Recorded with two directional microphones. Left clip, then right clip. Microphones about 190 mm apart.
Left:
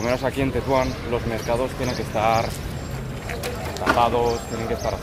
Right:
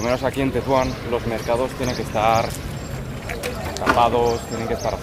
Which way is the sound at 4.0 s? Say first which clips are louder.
Right 3 dB; 10° right (ahead or behind).